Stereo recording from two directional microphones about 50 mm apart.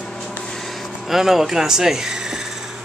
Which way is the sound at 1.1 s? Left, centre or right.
Centre.